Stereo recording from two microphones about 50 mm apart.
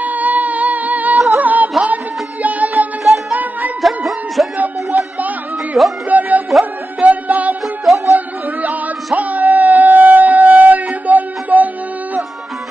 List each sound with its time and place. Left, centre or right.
0.0 s music: right
3.0 s music: centre
4.6 s a sound: right
6.0 s music: right
7.6 s music: centre
8.6 s music: right